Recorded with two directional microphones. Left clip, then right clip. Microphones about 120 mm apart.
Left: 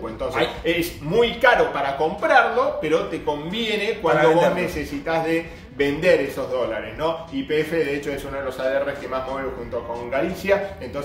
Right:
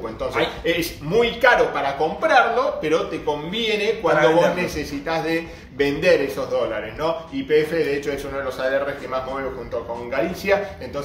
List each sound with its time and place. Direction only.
0.7 s a man's voice: 20° right (ahead or behind)
4.1 s a man's voice: 20° left (ahead or behind)
5.0 s a man's voice: 25° right (ahead or behind)